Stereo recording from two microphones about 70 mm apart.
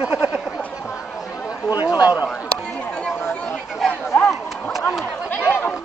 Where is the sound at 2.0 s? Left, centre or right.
Right.